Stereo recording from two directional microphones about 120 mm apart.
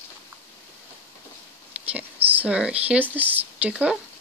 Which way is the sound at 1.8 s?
15° right (ahead or behind).